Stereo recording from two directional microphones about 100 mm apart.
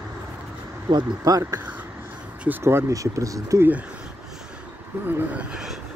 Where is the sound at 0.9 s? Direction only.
35° right (ahead or behind).